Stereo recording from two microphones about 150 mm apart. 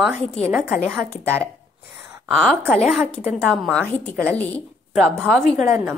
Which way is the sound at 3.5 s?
5° left (ahead or behind).